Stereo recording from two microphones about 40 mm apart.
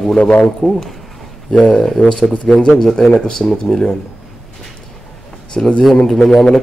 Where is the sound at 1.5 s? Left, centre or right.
Left.